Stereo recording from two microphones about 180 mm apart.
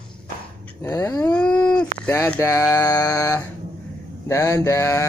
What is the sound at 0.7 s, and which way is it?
Dog, 15° left (ahead or behind).